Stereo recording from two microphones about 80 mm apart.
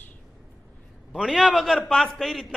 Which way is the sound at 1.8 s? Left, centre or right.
Centre.